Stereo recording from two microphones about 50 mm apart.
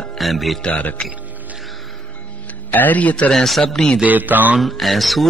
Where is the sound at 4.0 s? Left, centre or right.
Right.